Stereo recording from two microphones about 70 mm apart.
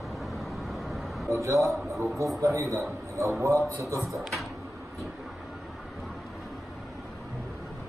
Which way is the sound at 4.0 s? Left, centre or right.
Centre.